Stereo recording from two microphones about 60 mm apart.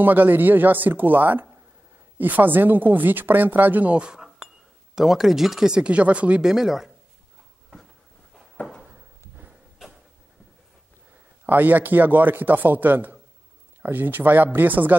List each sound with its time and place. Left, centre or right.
0.0 s a woman's voice: right
4.1 s chink: centre
4.9 s speech: centre
6.5 s speech: centre
8.8 s drawer open or close: right
11.4 s a woman's voice: right